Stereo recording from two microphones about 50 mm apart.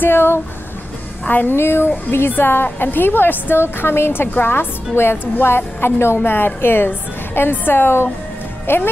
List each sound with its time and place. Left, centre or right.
0.0 s a woman's voice: left
1.2 s a woman's voice: left
1.6 s a woman's voice: left